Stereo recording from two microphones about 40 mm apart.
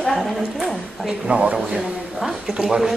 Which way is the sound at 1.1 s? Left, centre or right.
Right.